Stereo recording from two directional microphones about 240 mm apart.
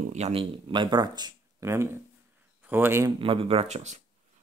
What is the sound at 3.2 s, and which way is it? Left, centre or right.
Speech, right.